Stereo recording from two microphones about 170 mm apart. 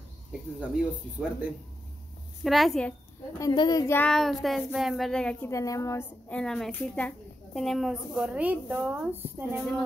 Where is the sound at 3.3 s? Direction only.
25° left (ahead or behind).